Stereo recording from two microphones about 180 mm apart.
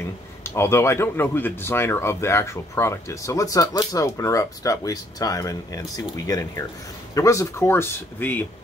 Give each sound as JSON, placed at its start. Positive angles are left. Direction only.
{"t": 0.0, "sound": "speech", "side_deg": 15}